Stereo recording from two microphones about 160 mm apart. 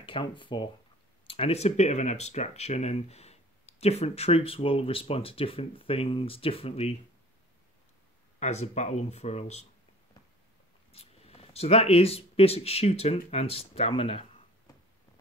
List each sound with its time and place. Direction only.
0.0 s speech: 30° left (ahead or behind)
8.4 s speech: 45° left (ahead or behind)
10.9 s speech: 40° left (ahead or behind)